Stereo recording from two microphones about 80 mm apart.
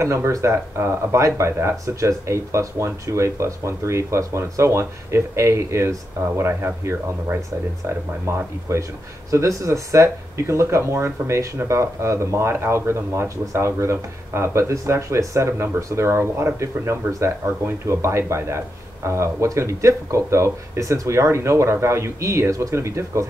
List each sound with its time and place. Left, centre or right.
0.0 s speech: right